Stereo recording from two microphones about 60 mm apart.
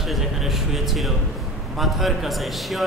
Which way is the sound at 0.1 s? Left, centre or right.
Centre.